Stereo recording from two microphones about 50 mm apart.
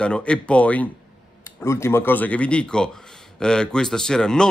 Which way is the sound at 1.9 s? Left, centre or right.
Left.